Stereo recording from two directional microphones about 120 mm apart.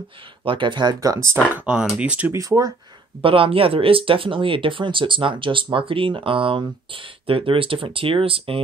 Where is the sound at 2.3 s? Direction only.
30° right (ahead or behind).